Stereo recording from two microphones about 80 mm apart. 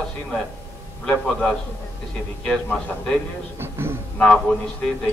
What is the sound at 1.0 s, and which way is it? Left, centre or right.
A man's voice, centre.